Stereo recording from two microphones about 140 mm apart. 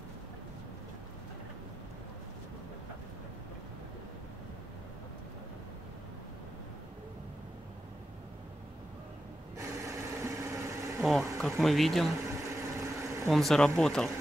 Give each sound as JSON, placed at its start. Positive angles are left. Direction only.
{"t": 9.6, "sound": "vehicle", "side_deg": -20}
{"t": 11.0, "sound": "bee", "side_deg": 0}
{"t": 11.4, "sound": "speech", "side_deg": 0}
{"t": 12.3, "sound": "a sound", "side_deg": -20}
{"t": 13.3, "sound": "speech", "side_deg": 0}